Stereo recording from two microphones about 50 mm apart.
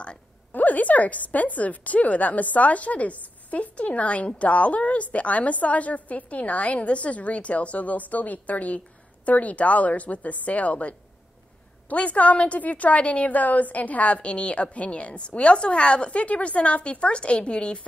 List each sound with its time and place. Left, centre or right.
0.5 s a woman's voice: left